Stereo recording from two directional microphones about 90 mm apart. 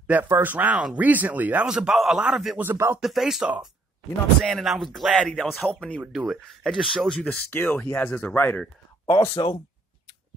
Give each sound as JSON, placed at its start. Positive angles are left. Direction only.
{"t": 0.0, "sound": "a man's voice", "side_deg": -20}
{"t": 1.7, "sound": "a man's voice", "side_deg": -5}
{"t": 2.6, "sound": "speech", "side_deg": -25}
{"t": 3.0, "sound": "speech", "side_deg": -5}
{"t": 7.5, "sound": "speech", "side_deg": 20}
{"t": 9.0, "sound": "speech", "side_deg": 40}